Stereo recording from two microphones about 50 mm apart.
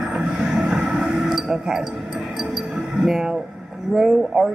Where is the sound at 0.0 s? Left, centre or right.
Centre.